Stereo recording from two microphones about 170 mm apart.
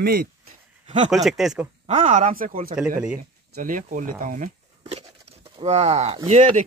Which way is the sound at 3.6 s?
50° right (ahead or behind).